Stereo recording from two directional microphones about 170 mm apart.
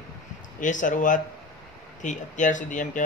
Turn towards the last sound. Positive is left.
turn(degrees=50)  # may be behind; listen again after turning